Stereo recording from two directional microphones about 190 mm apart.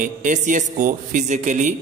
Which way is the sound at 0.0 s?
45° right (ahead or behind).